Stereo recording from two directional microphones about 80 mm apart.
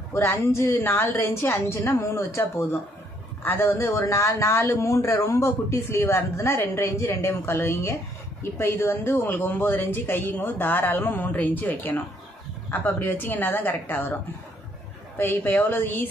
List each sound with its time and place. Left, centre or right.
0.1 s a man's voice: left
15.1 s speech: left